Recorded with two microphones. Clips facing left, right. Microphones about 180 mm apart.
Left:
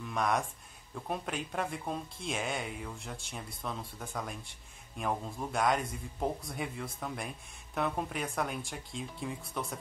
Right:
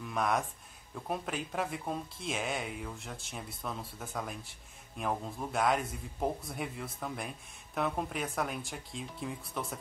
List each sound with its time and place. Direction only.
0.0 s speech: centre (ahead or behind)